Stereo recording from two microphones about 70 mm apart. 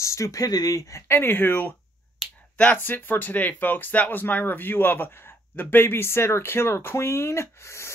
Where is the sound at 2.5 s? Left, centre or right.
Centre.